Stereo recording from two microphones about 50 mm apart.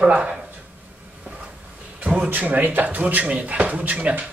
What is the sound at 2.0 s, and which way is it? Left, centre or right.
Speech, right.